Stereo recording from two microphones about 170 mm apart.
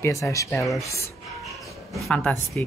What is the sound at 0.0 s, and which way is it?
Speech, 20° left (ahead or behind).